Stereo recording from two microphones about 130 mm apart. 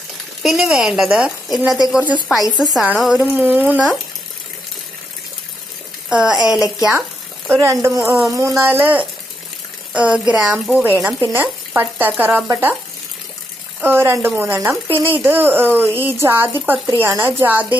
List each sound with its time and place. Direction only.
0.4 s a woman's voice: 5° right (ahead or behind)
6.0 s a woman's voice: 5° right (ahead or behind)
7.4 s speech: 20° right (ahead or behind)
11.3 s frying: 15° right (ahead or behind)
12.2 s speech: 15° right (ahead or behind)
13.7 s speech: 15° right (ahead or behind)